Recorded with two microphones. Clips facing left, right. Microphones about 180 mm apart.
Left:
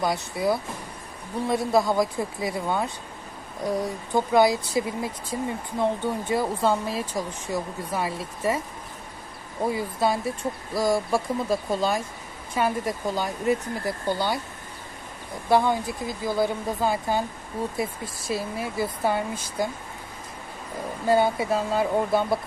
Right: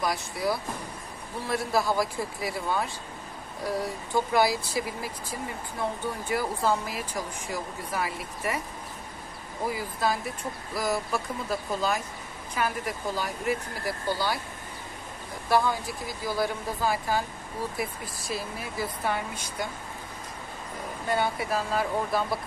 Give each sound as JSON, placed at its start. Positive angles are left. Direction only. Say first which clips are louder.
{"t": 0.0, "sound": "speech", "louder": "left 4 dB", "side_deg": 25}
{"t": 9.7, "sound": "speech", "louder": "left 4 dB", "side_deg": 25}
{"t": 15.5, "sound": "speech", "louder": "left 4 dB", "side_deg": 25}
{"t": 18.3, "sound": "speech", "louder": "left 6 dB", "side_deg": 25}
{"t": 21.1, "sound": "speech", "louder": "left 6 dB", "side_deg": 25}